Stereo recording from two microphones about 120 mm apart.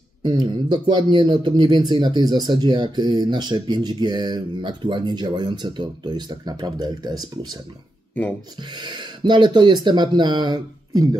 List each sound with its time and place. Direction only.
0.2 s a man's voice: 40° right (ahead or behind)
8.1 s speech: 15° left (ahead or behind)
8.7 s a man's voice: 40° right (ahead or behind)